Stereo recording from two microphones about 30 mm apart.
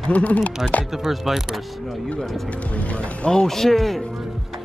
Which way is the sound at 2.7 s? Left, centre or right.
Left.